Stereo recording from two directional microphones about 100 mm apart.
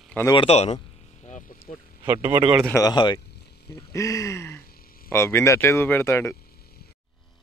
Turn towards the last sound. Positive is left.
turn(degrees=30)  # may be behind; listen again after turning